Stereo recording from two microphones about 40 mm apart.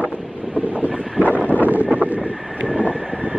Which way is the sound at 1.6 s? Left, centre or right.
Right.